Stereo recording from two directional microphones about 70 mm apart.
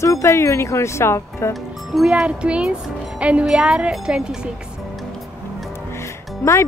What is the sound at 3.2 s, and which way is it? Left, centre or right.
Speech, centre.